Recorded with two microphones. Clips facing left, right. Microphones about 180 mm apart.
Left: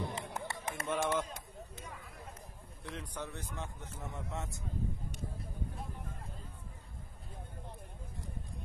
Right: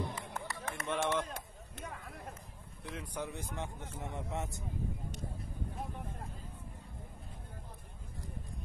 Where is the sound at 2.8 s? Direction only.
5° right (ahead or behind); by 4.5 s 20° right (ahead or behind).